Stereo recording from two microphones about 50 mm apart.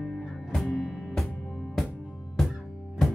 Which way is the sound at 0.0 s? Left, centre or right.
Centre.